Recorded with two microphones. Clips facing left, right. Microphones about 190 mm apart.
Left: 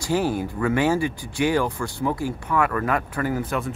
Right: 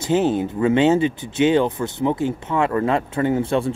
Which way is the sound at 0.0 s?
20° right (ahead or behind).